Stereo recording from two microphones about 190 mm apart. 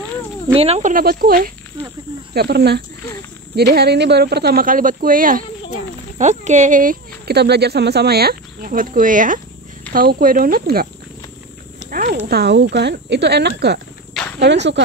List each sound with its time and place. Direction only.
0.6 s speech: 35° right (ahead or behind); by 10.9 s 50° right (ahead or behind)
11.9 s horse: 50° right (ahead or behind)
12.3 s speech: 60° right (ahead or behind)